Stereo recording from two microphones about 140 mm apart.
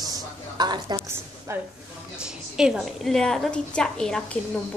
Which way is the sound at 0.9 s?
15° right (ahead or behind).